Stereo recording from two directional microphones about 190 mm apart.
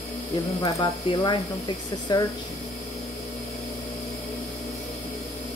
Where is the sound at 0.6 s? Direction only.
20° left (ahead or behind).